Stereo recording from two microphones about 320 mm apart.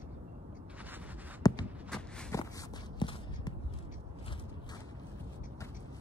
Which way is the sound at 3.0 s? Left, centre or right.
Centre.